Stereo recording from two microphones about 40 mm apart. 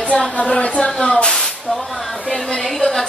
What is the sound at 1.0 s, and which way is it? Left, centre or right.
Spray, centre.